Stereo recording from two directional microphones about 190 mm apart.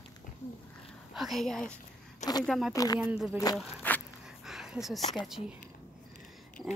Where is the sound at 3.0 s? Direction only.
5° right (ahead or behind).